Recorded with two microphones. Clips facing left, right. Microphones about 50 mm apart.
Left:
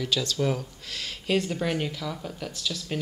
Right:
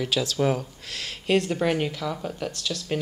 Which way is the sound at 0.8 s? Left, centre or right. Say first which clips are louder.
Right 3 dB; centre.